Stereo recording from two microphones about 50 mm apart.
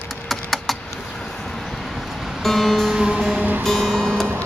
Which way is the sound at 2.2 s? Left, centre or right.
Centre.